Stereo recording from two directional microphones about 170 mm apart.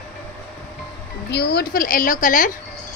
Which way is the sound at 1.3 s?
70° left (ahead or behind).